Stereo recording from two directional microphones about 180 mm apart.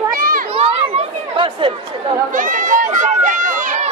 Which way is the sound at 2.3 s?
45° right (ahead or behind).